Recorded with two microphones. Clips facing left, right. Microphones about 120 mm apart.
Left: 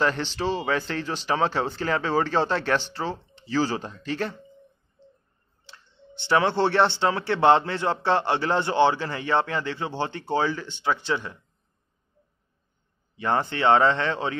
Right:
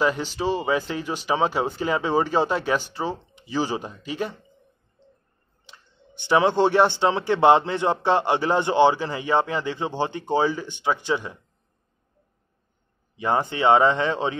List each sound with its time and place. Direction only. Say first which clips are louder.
0.0 s a man's voice: right 2 dB; 10° right (ahead or behind)
5.7 s a sound: left 2 dB; 15° right (ahead or behind)
7.0 s a man's voice: right 3 dB; 20° right (ahead or behind)
13.1 s a man's voice: right 2 dB; 15° right (ahead or behind)